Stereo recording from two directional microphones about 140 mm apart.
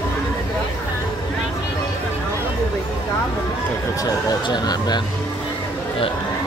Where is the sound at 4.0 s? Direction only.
30° left (ahead or behind).